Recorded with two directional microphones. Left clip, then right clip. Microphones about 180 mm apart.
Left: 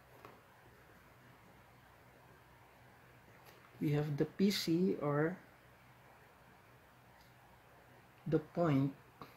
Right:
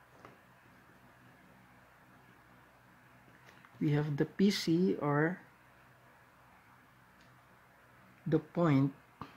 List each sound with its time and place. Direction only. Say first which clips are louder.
3.8 s speech: right 3 dB; 30° right (ahead or behind)
8.3 s speech: right 3 dB; 35° right (ahead or behind)